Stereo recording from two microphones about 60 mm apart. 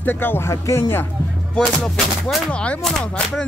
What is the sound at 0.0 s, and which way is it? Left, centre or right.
Music, left.